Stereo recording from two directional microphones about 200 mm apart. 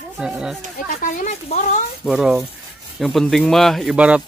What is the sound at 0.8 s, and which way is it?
Speech, 40° left (ahead or behind).